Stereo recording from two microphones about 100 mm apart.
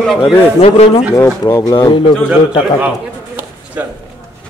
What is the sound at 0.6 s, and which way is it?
Speech, 90° left.